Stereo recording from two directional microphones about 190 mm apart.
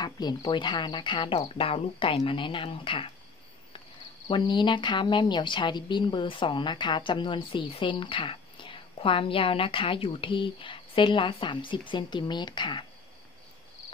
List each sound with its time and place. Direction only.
0.0 s a woman's voice: 20° left (ahead or behind)
4.3 s a woman's voice: 25° left (ahead or behind)